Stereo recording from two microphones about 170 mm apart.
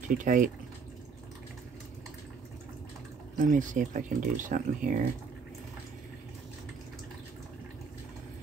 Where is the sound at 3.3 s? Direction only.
50° right (ahead or behind).